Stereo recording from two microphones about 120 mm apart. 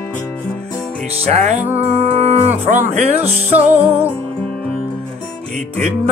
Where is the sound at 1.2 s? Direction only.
65° right (ahead or behind).